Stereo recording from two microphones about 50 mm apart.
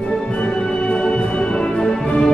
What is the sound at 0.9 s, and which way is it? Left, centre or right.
Music, centre.